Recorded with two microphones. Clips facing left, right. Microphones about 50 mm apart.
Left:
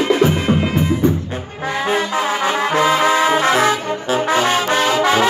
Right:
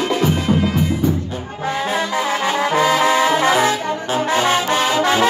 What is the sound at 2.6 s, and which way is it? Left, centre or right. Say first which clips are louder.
Trombone: even; centre.